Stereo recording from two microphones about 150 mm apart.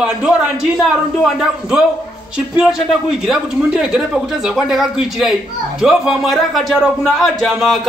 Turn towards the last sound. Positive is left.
turn(degrees=0)  # may be behind; listen again after turning